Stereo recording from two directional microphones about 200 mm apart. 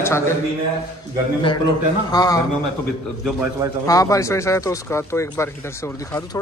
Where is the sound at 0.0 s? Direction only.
10° left (ahead or behind).